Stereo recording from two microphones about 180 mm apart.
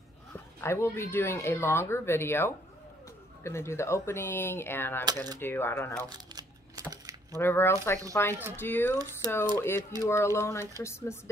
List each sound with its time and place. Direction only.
0.6 s speech: 15° left (ahead or behind)
6.0 s a sound: 20° right (ahead or behind)
7.3 s speech: 15° left (ahead or behind)